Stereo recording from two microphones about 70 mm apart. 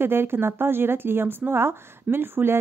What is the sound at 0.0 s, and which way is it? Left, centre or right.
A woman's voice, right.